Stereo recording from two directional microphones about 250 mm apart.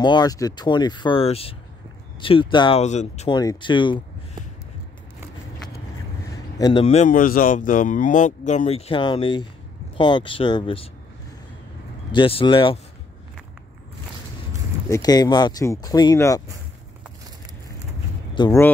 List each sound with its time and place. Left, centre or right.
0.0 s speech: centre
6.3 s speech: centre
12.1 s speech: left
14.9 s speech: centre
18.3 s speech: centre